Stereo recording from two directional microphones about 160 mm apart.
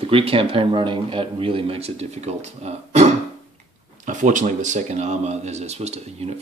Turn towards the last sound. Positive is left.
turn(degrees=-40)  # may be behind; listen again after turning